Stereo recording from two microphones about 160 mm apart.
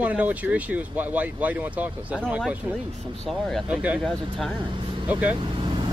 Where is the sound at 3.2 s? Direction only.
Centre (ahead or behind).